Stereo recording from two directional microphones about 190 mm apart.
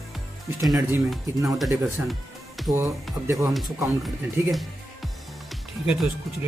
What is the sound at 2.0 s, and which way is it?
Music, centre (ahead or behind).